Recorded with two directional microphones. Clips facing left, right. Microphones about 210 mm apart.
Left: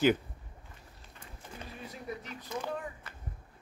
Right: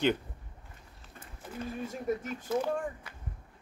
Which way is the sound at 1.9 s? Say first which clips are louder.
Right 7 dB; 45° right (ahead or behind).